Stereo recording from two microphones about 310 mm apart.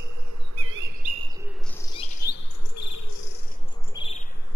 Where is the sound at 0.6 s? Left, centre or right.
Right.